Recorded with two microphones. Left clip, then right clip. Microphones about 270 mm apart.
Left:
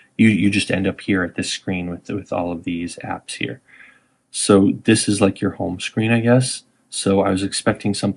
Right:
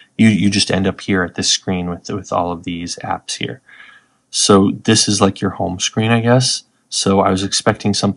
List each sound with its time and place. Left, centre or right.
0.2 s speech: centre